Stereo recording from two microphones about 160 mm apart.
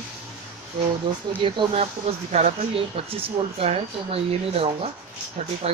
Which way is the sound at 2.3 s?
45° right (ahead or behind).